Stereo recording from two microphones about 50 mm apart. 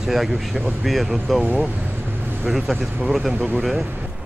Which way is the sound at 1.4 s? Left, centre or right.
Right.